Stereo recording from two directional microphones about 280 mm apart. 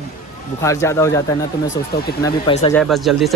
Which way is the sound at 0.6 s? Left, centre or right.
Centre.